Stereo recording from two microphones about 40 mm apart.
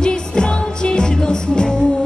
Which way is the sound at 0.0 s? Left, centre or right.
Left.